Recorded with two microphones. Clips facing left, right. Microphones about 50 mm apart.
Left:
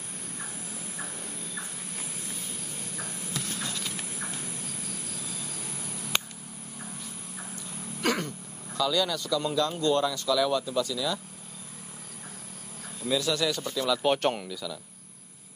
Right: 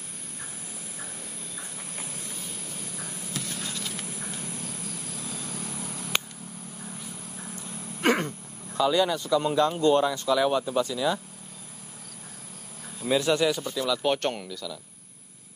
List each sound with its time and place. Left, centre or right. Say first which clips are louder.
7.5 s a sound: right 1 dB; right
8.7 s speech: right 4 dB; right
13.0 s speech: right 4 dB; right
13.5 s speech: right 2 dB; centre
13.8 s speech: left 1 dB; centre